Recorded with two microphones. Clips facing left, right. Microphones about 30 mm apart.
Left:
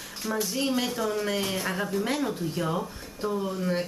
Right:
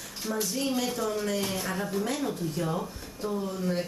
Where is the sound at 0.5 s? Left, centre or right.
Left.